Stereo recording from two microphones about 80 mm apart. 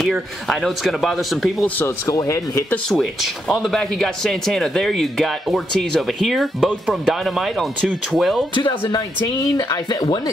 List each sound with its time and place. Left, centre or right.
0.0 s speech: centre
2.0 s speech: left
2.9 s speech: centre
9.4 s speech: left
9.8 s speech: left